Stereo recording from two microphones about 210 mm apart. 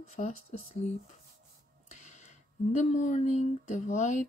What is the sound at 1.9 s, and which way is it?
Speech, 35° left (ahead or behind).